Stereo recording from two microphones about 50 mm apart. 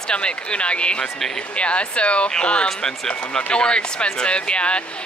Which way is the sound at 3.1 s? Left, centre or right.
Left.